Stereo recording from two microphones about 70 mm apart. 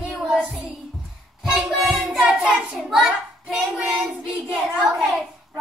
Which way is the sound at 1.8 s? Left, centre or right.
Centre.